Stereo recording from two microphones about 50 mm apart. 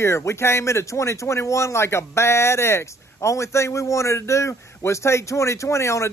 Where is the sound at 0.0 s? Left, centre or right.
Left.